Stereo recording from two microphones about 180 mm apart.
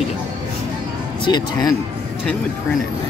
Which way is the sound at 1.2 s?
25° left (ahead or behind).